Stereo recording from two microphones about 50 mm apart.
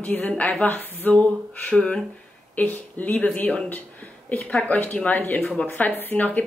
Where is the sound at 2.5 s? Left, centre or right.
Left.